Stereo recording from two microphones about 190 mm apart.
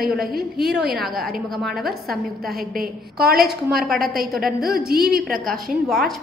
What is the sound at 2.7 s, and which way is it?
A woman's voice, 55° right (ahead or behind).